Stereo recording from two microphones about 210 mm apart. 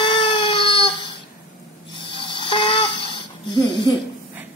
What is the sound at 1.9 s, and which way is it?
Snoring, 25° left (ahead or behind).